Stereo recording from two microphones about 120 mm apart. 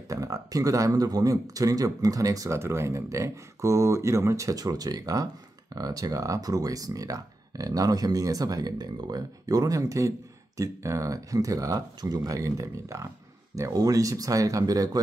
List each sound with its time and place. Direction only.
0.1 s speech: 30° right (ahead or behind)